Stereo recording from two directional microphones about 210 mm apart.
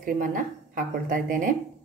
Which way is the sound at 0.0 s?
40° right (ahead or behind).